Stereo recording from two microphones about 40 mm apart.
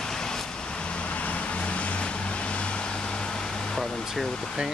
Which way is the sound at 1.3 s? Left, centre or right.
Left.